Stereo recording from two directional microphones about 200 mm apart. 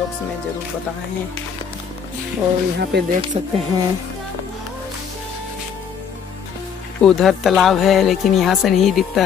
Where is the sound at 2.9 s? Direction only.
55° right (ahead or behind).